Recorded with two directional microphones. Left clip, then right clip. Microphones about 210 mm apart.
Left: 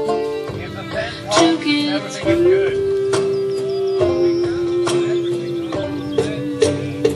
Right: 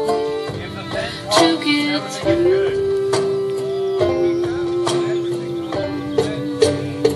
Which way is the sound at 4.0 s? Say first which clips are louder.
Left 1 dB; 35° right (ahead or behind).